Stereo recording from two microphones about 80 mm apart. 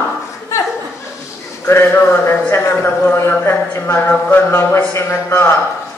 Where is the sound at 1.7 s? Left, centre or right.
Left.